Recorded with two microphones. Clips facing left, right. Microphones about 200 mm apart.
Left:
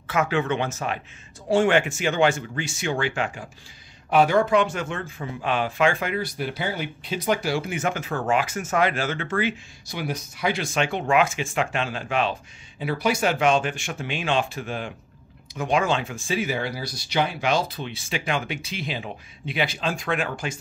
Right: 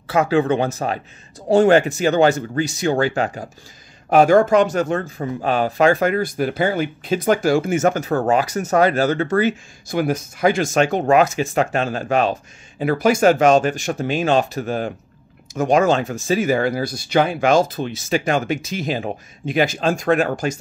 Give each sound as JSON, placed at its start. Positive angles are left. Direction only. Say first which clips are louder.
{"t": 0.0, "sound": "speech", "louder": "right 7 dB", "side_deg": -35}